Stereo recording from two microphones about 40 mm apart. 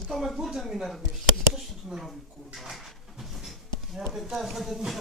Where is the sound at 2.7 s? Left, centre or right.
Centre.